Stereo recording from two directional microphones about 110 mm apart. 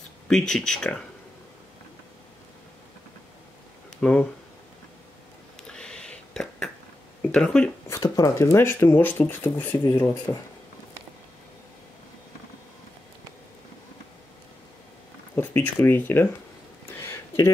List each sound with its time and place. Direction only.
0.3 s speech: 5° left (ahead or behind)
4.0 s speech: 5° left (ahead or behind)
5.6 s whispering: 5° left (ahead or behind)
7.2 s speech: 5° left (ahead or behind)
8.0 s speech: 30° left (ahead or behind)
15.3 s speech: 15° left (ahead or behind)
17.0 s a sound: 25° left (ahead or behind)